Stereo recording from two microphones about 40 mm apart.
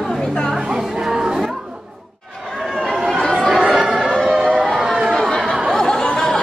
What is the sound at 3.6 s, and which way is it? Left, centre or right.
Chatter, centre.